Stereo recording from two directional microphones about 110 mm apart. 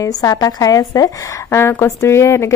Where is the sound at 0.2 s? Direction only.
35° left (ahead or behind).